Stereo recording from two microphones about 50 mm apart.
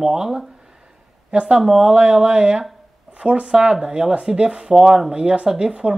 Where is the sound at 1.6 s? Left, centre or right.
Centre.